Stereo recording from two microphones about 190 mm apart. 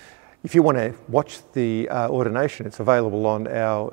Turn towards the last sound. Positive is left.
turn(degrees=-15)  # may be behind; listen again after turning